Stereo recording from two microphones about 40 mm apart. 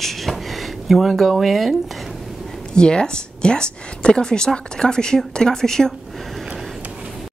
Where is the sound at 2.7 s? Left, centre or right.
Left.